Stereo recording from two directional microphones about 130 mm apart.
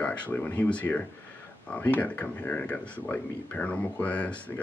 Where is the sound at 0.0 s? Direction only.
10° left (ahead or behind).